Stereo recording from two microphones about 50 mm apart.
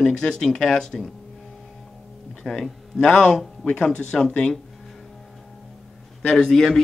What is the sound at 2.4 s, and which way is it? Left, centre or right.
Speech, centre.